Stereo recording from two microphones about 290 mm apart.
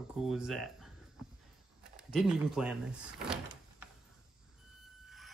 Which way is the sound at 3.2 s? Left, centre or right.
Centre.